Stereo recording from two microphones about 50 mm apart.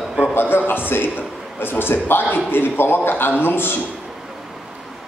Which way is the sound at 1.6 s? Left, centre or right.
Left.